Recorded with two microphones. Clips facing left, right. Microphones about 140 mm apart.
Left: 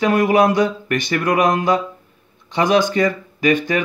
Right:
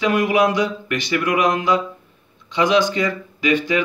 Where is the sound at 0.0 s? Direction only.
45° left (ahead or behind).